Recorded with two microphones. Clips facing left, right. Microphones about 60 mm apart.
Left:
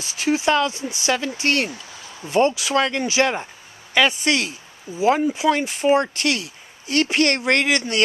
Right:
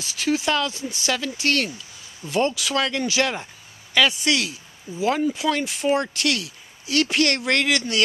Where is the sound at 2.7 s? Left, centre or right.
Left.